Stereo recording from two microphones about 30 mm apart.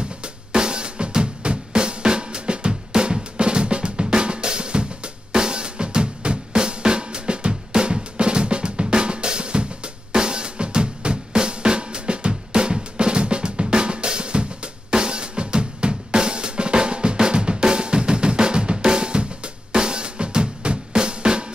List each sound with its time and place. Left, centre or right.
0.2 s drum kit: right
10.1 s drum: right